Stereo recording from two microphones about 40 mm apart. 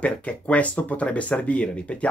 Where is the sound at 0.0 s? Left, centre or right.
Left.